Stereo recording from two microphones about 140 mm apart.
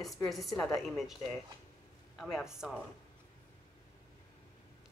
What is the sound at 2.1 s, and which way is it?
Speech, centre (ahead or behind).